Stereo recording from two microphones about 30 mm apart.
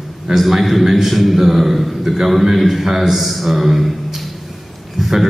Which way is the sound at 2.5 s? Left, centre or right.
Centre.